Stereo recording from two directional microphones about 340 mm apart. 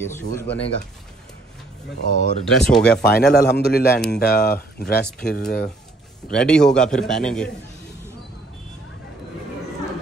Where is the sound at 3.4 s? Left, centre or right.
Left.